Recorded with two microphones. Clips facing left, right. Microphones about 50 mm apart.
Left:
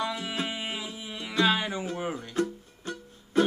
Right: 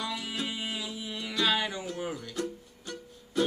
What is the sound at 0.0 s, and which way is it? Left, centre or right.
Music, left.